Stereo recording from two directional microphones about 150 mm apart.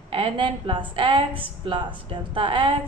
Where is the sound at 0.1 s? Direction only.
35° right (ahead or behind).